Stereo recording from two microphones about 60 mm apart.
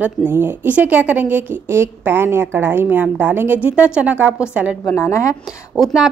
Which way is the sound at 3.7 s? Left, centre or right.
Centre.